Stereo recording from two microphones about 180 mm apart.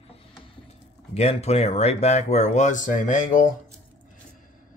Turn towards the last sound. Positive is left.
turn(degrees=45)  # may be behind; listen again after turning